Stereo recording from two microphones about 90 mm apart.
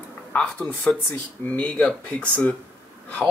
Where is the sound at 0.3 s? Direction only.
15° left (ahead or behind).